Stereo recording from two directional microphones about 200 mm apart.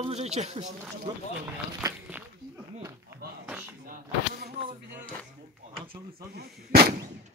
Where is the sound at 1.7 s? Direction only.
10° right (ahead or behind).